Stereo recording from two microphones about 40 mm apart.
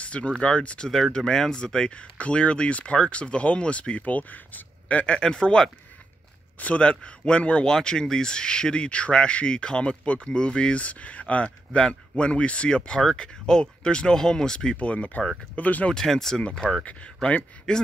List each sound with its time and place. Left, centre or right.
0.0 s speech: left
0.8 s a man's voice: centre; by 5.1 s left
5.1 s a man's voice: left
6.8 s a man's voice: left
14.8 s speech: left
15.9 s speech: centre
17.7 s a man's voice: left